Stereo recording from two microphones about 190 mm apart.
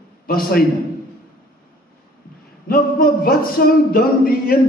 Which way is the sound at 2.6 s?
50° left (ahead or behind).